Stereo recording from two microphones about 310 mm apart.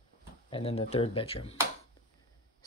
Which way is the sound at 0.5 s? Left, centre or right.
Centre.